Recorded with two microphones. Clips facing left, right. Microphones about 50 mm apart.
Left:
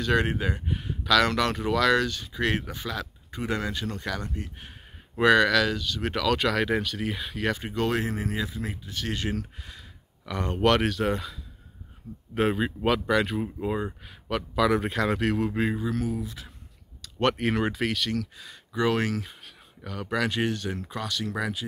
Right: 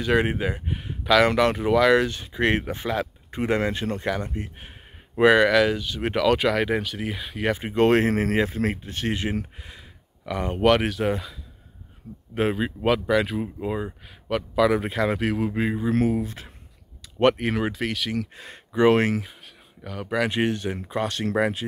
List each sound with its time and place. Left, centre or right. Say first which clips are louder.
0.0 s speech: right 3 dB; centre
7.4 s speech: right 4 dB; right
7.8 s speech: right 9 dB; right
8.8 s speech: right 5 dB; right
9.1 s a sound: right 1 dB; right
10.3 s speech: right 3 dB; centre
12.4 s speech: right 1 dB; centre
15.9 s speech: right 7 dB; right
17.0 s a sound: right 5 dB; centre
17.4 s speech: even; centre
18.3 s speech: right 5 dB; right
19.8 s speech: right 3 dB; centre
20.2 s speech: right 3 dB; right
21.0 s speech: right 8 dB; right